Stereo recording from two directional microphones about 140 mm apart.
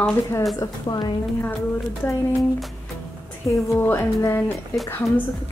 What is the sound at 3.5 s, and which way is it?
Speech, 15° left (ahead or behind).